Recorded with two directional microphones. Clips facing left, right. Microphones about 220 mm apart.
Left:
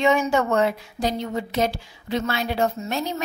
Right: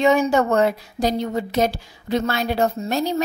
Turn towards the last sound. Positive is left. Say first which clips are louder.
# right 5 dB
turn(degrees=-35)  # may be behind; listen again after turning